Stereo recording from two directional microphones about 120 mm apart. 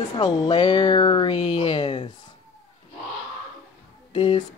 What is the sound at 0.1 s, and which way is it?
Speech, 35° left (ahead or behind).